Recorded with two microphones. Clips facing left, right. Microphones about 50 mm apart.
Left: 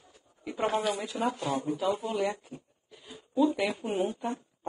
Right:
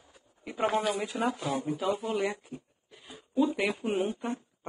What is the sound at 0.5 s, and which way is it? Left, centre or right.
Speech, right.